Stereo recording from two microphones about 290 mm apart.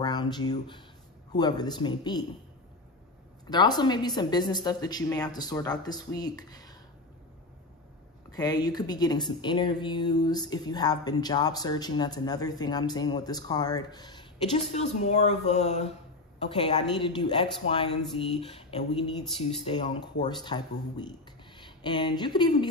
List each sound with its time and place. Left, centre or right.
0.0 s speech: centre
3.4 s speech: centre
8.3 s speech: centre